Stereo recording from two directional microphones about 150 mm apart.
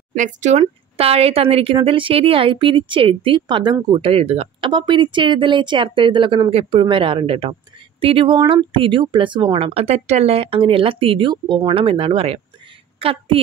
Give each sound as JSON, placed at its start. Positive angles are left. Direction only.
{"t": 0.1, "sound": "speech", "side_deg": -55}